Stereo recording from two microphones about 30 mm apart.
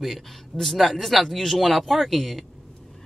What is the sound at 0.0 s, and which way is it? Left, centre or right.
Speech, centre.